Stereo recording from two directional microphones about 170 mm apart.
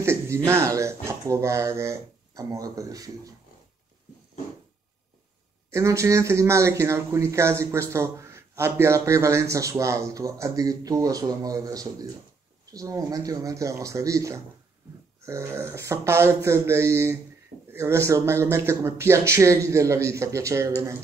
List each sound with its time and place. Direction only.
0.0 s a sound: 15° right (ahead or behind)
0.5 s a man's voice: 15° right (ahead or behind)
5.7 s a man's voice: 15° right (ahead or behind)